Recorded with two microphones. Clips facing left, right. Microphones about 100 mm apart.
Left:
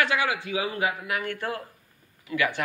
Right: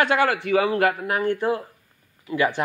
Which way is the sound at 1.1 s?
40° right (ahead or behind).